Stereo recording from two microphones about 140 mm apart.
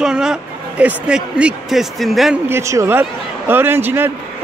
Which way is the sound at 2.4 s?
20° right (ahead or behind).